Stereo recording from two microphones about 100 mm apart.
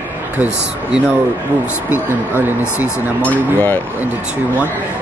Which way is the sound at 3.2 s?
15° left (ahead or behind).